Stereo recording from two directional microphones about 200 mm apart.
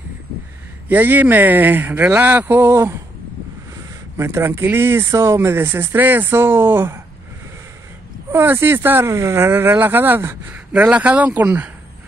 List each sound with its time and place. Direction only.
0.8 s speech: 10° right (ahead or behind)
4.2 s speech: 15° right (ahead or behind)
8.3 s speech: 10° right (ahead or behind)